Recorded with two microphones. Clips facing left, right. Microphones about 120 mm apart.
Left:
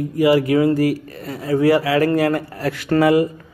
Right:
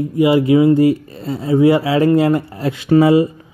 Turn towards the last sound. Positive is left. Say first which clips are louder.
# right 4 dB
turn(degrees=-25)  # may be behind; listen again after turning